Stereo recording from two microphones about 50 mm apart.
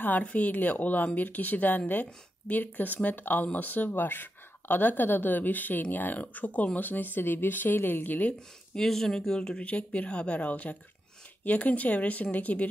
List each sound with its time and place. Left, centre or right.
0.2 s a woman's voice: left
8.7 s a woman's voice: centre; by 12.6 s left